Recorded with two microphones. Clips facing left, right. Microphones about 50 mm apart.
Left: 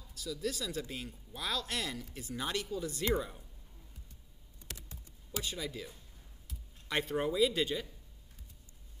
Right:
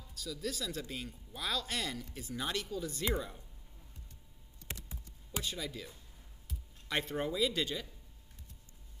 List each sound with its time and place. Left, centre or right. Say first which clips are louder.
0.1 s speech: left 2 dB; centre
4.7 s a sound: right 3 dB; right
5.4 s speech: left 1 dB; centre